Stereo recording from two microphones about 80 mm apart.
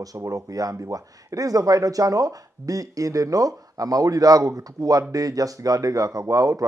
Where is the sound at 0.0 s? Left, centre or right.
Right.